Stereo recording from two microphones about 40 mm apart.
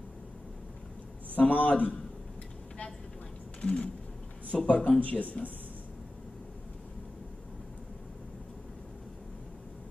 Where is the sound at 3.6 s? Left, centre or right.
Left.